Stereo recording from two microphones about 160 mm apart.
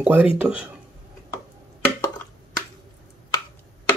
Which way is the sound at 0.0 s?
10° right (ahead or behind).